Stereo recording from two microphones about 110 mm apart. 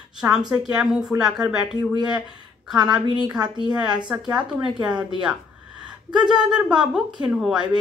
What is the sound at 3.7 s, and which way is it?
Speech, 10° right (ahead or behind).